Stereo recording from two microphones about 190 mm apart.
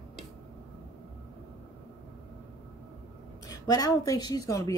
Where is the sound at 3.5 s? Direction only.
20° left (ahead or behind).